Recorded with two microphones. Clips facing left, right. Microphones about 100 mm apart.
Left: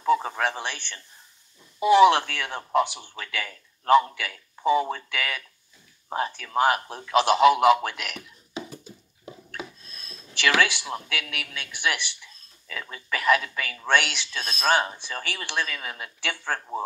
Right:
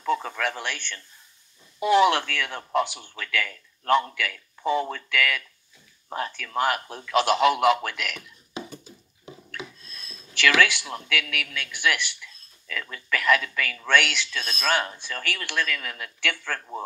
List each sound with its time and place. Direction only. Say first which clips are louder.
0.0 s a sound: left 3 dB; 30° left (ahead or behind)
1.8 s speech: left 3 dB; 10° left (ahead or behind)
3.2 s a man's voice: right 4 dB; 30° left (ahead or behind)
4.6 s speech: left 3 dB; 15° left (ahead or behind)
4.9 s speech: right 4 dB; 25° left (ahead or behind)
6.6 s speech: left 3 dB; 40° left (ahead or behind)
7.0 s speech: left 2 dB; 20° left (ahead or behind)
10.4 s speech: right 1 dB; 20° left (ahead or behind)
13.7 s speech: even; 20° left (ahead or behind)
14.3 s speech: left 1 dB; 35° left (ahead or behind)
14.7 s speech: left 3 dB; 20° left (ahead or behind)